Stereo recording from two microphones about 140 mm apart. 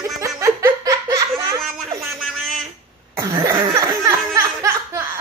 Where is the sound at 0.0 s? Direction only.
20° right (ahead or behind).